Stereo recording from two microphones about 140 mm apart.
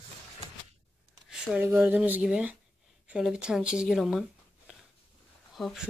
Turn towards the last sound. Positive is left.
turn(degrees=0)  # may be behind; listen again after turning